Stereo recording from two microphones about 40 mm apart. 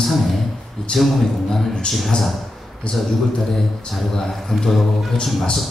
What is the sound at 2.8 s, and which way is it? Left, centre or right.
Speech, left.